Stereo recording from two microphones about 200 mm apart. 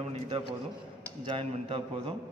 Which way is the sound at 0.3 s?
25° right (ahead or behind).